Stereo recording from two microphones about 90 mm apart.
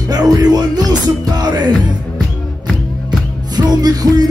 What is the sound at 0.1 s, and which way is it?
Music, 45° right (ahead or behind).